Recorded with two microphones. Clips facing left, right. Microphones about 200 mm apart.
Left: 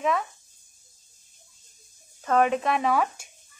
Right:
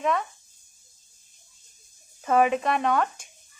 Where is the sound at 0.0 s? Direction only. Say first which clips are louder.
Even; centre (ahead or behind).